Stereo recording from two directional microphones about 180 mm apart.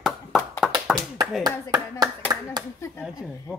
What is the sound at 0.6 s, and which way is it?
Tap, 5° right (ahead or behind).